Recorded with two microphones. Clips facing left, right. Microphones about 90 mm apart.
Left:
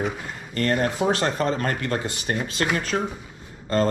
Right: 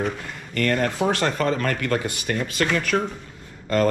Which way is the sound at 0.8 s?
20° left (ahead or behind).